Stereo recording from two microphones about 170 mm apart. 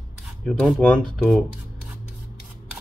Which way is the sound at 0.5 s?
Centre (ahead or behind).